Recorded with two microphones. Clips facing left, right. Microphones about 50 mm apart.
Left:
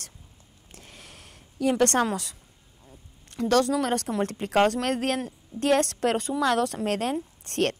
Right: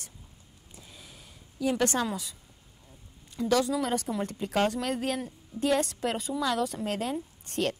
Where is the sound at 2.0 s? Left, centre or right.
Left.